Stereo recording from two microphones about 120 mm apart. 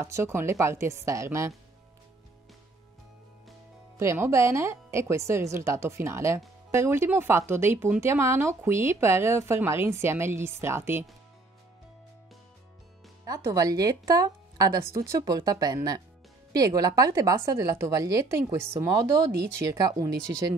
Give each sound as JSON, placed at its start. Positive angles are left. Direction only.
{"t": 0.0, "sound": "speech", "side_deg": -20}
{"t": 4.0, "sound": "speech", "side_deg": -25}
{"t": 13.2, "sound": "speech", "side_deg": -30}